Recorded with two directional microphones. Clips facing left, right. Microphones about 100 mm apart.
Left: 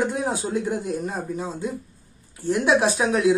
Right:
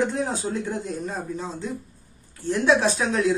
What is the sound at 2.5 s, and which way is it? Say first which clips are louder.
Speech: left 1 dB; 10° left (ahead or behind).